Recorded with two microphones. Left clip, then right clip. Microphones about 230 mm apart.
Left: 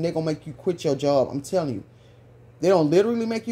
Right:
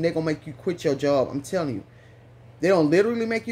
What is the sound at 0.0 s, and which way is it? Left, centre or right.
Speech, centre.